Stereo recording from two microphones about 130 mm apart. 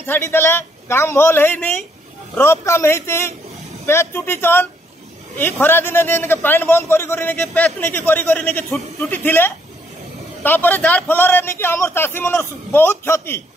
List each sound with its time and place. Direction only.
0.0 s a man's voice: 15° left (ahead or behind)